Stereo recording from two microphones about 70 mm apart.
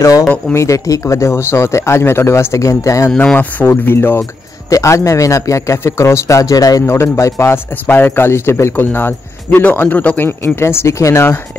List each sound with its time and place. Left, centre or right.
0.6 s a man's voice: left
3.3 s speech: left
4.2 s a man's voice: left
6.9 s speech: left